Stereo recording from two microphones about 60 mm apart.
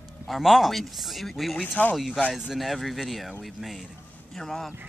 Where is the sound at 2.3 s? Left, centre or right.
Centre.